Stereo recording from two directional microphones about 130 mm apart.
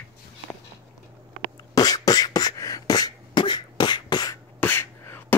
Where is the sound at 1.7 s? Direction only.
30° left (ahead or behind).